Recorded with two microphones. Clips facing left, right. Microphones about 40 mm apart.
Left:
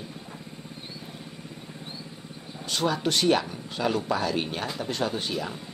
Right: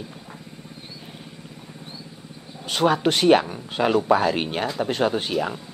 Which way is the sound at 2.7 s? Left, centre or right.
Right.